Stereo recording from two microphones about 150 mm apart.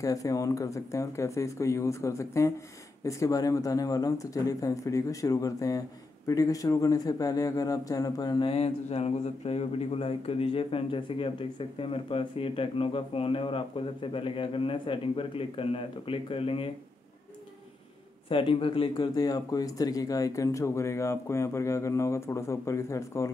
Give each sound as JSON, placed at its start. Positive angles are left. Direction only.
{"t": 0.0, "sound": "speech", "side_deg": 20}
{"t": 8.5, "sound": "speech", "side_deg": 45}
{"t": 18.3, "sound": "speech", "side_deg": 35}